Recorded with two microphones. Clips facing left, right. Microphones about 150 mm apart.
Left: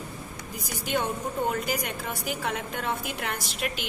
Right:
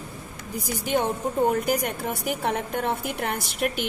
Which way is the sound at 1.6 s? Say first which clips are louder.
Right 5 dB; 55° right (ahead or behind).